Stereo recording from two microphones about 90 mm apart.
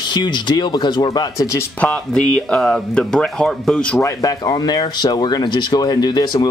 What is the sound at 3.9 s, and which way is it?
Speech, 40° left (ahead or behind).